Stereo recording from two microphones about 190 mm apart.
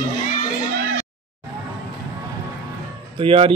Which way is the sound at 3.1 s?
30° right (ahead or behind).